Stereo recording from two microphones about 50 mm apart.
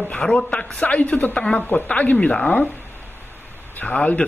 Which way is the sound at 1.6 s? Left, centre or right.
Left.